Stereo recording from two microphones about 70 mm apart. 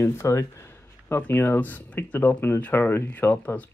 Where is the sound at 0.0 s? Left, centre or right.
Left.